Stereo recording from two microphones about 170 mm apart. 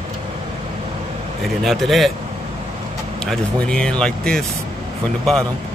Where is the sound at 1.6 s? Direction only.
Centre (ahead or behind).